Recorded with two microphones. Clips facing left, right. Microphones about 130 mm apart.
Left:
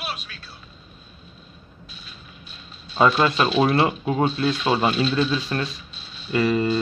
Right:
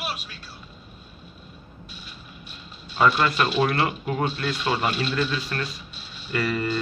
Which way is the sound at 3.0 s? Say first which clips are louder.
Left 2 dB; 20° left (ahead or behind).